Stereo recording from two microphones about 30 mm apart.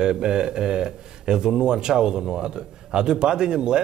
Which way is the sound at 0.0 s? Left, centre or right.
Right.